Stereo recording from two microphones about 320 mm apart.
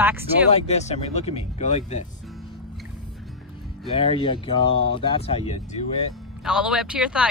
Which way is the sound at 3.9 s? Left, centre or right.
Centre.